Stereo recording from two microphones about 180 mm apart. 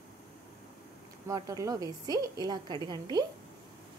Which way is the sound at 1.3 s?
15° right (ahead or behind).